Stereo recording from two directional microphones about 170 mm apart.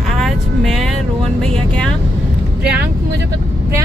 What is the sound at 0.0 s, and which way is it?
Vehicle, centre (ahead or behind).